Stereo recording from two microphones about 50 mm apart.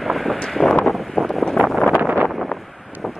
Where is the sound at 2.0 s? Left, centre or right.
Right.